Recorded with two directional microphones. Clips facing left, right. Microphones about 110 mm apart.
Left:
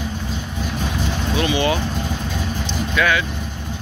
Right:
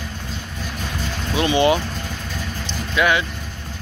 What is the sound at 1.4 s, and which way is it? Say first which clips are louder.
Speech: right 3 dB; 25° right (ahead or behind).